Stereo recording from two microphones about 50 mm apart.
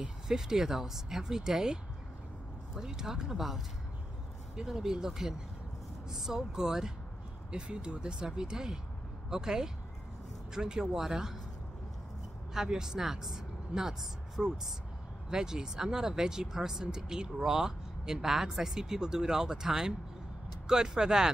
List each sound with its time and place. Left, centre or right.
0.3 s speech: centre
12.5 s speech: centre